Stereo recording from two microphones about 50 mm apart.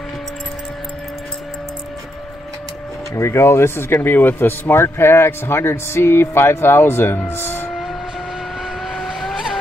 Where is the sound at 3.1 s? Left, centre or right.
Left.